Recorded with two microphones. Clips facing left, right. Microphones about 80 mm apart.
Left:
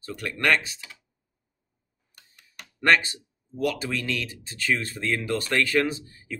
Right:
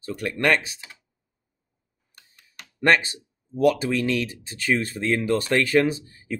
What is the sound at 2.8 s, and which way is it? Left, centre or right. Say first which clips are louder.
Speech: right 1 dB; centre.